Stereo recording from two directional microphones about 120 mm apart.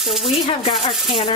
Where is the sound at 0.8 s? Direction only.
45° left (ahead or behind).